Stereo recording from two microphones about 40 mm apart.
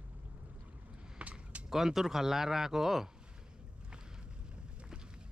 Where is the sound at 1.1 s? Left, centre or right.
Right.